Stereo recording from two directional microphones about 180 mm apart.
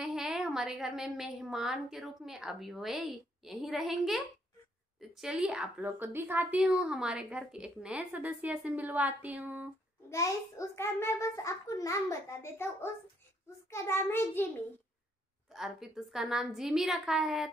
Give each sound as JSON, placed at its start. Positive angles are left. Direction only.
{"t": 0.0, "sound": "a woman's voice", "side_deg": -5}
{"t": 10.0, "sound": "a child's voice", "side_deg": 15}
{"t": 15.5, "sound": "a woman's voice", "side_deg": 0}